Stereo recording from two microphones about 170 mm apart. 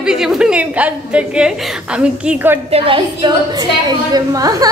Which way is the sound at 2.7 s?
30° right (ahead or behind).